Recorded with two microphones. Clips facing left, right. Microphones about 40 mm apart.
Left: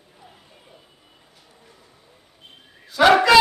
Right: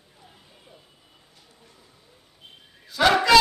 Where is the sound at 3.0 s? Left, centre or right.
Centre.